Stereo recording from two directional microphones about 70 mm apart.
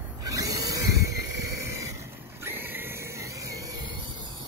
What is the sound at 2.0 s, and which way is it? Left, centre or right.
Vehicle, right.